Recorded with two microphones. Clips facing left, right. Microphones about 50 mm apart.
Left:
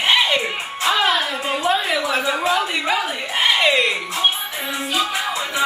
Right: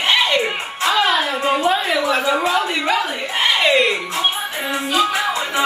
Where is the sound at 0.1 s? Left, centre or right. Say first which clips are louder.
Right 1 dB; centre.